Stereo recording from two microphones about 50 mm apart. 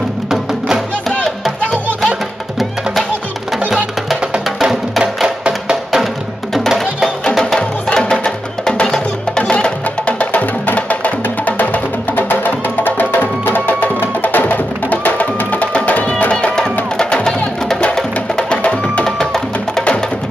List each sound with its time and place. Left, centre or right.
4.6 s music: centre
7.3 s music: centre
19.0 s music: centre